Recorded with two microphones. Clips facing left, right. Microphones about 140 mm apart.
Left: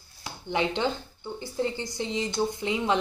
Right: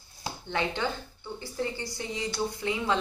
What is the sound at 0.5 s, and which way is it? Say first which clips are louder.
A woman's voice: left 4 dB; 20° left (ahead or behind).